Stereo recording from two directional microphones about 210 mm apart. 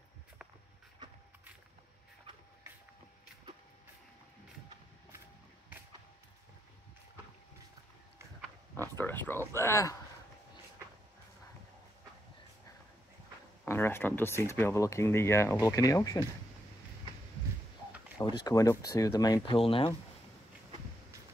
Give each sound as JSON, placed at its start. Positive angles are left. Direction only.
{"t": 8.8, "sound": "speech", "side_deg": 10}
{"t": 13.7, "sound": "speech", "side_deg": 10}
{"t": 18.1, "sound": "speech", "side_deg": 20}